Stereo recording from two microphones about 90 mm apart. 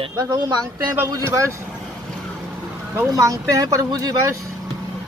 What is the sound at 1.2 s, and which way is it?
Speech, 30° right (ahead or behind).